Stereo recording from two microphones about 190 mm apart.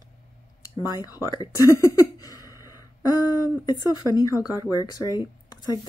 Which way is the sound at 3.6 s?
20° left (ahead or behind).